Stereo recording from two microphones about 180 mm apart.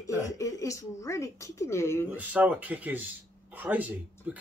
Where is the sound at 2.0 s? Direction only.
10° right (ahead or behind).